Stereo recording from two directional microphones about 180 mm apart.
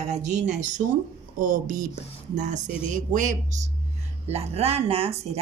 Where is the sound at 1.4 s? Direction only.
45° right (ahead or behind).